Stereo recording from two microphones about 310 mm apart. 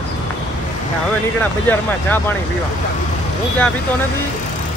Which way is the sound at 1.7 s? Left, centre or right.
Centre.